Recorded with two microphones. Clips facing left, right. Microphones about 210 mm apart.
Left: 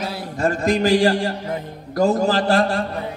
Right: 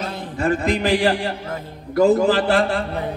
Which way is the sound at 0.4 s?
40° left (ahead or behind).